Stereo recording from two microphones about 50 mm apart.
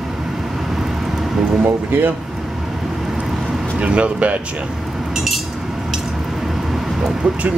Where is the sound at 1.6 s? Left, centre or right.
Right.